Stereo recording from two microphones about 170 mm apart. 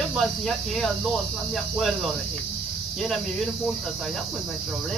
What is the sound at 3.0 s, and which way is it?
Speech, centre (ahead or behind).